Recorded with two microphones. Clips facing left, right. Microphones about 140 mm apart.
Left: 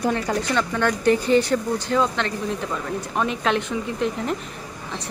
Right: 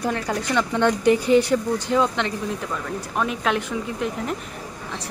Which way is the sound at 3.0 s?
5° right (ahead or behind).